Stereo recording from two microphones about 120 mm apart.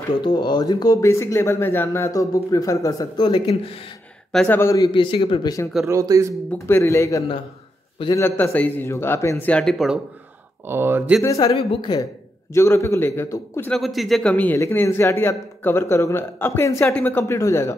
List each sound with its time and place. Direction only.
0.2 s speech: 40° left (ahead or behind)
1.0 s a man's voice: 25° left (ahead or behind)
3.3 s speech: 45° left (ahead or behind)
4.5 s a man's voice: 20° left (ahead or behind)
4.9 s speech: 45° left (ahead or behind)
5.9 s speech: 25° right (ahead or behind)
6.5 s a man's voice: 20° left (ahead or behind)
9.5 s speech: 10° left (ahead or behind)
10.7 s speech: 20° right (ahead or behind)
11.2 s speech: 35° left (ahead or behind)
12.5 s a man's voice: 20° left (ahead or behind)
13.7 s a man's voice: centre (ahead or behind)
14.3 s a man's voice: 15° left (ahead or behind)